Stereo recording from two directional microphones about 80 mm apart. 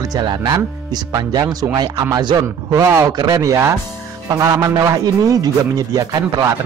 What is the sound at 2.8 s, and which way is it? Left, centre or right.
Speech, right.